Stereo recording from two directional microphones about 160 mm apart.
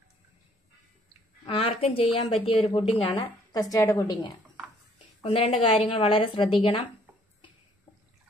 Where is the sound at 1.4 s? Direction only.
35° left (ahead or behind).